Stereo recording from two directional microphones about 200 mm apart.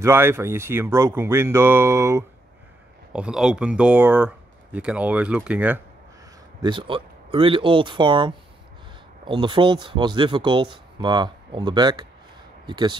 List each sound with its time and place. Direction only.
0.0 s speech: 10° right (ahead or behind)
6.6 s speech: 25° right (ahead or behind)